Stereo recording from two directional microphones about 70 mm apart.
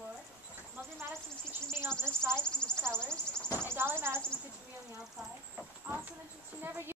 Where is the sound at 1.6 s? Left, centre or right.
Right.